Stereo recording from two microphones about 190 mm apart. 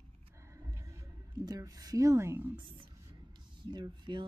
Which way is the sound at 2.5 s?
25° right (ahead or behind).